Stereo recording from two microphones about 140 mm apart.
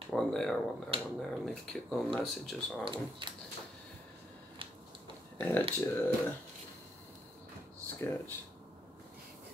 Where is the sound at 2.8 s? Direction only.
35° right (ahead or behind).